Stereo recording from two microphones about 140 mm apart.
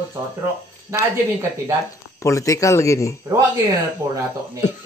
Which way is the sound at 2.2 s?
20° left (ahead or behind).